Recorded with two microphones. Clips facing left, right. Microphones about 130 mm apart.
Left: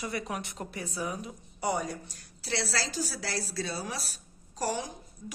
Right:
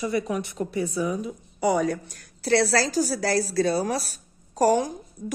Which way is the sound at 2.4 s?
50° right (ahead or behind).